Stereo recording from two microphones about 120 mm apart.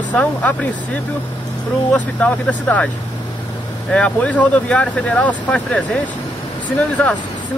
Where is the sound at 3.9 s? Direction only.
10° left (ahead or behind).